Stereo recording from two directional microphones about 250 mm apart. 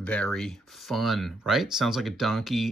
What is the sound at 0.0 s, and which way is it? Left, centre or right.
Speech, centre.